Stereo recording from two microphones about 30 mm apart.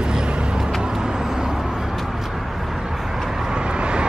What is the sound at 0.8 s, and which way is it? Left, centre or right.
Vehicle, right.